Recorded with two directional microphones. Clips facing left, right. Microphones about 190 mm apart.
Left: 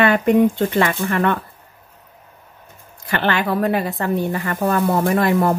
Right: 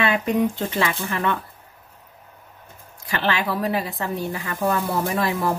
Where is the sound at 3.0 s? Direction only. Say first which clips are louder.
Left 4 dB; 55° left (ahead or behind).